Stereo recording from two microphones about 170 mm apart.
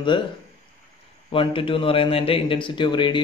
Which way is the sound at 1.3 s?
30° left (ahead or behind).